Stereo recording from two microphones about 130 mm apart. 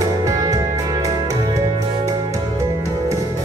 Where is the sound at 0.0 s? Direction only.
25° right (ahead or behind).